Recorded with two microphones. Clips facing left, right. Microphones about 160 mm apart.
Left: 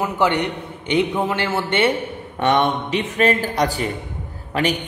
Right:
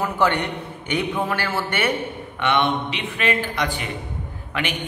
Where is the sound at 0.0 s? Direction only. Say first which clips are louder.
Left 2 dB; 20° left (ahead or behind).